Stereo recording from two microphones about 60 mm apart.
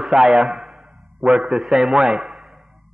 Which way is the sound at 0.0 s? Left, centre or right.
Centre.